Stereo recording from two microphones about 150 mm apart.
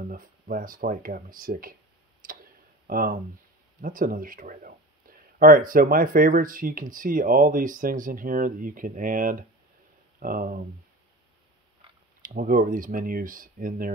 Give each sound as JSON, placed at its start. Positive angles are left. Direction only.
{"t": 0.0, "sound": "speech", "side_deg": -70}
{"t": 2.2, "sound": "tick", "side_deg": -70}
{"t": 2.9, "sound": "speech", "side_deg": -75}
{"t": 12.2, "sound": "speech", "side_deg": -70}